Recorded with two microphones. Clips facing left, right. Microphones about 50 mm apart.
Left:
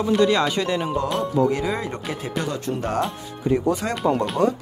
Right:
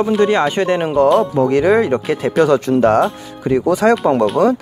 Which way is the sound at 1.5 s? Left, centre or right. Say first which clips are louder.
Right 12 dB; right.